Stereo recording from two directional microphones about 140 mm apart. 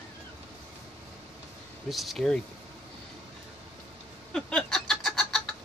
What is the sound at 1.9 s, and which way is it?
Speech, centre (ahead or behind).